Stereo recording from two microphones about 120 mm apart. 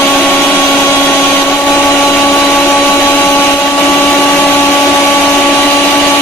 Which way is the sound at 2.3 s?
5° left (ahead or behind).